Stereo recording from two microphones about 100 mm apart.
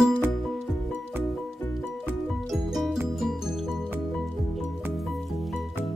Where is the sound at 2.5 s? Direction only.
5° right (ahead or behind).